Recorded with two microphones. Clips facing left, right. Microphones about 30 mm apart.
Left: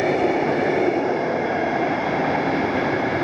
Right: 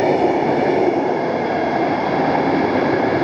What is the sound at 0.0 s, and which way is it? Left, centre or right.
Train, right.